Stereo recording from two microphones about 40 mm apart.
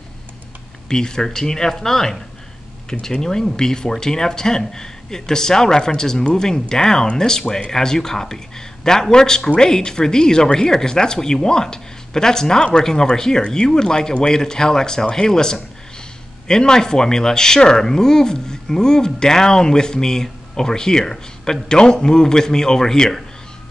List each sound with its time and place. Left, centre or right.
0.8 s speech: centre